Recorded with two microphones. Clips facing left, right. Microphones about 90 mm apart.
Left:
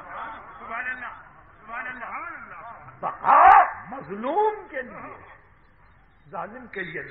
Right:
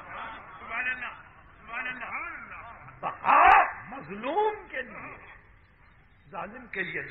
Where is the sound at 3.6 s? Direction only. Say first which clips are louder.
Left 6 dB; 25° left (ahead or behind).